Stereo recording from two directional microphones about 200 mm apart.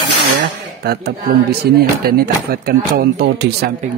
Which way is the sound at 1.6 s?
50° right (ahead or behind).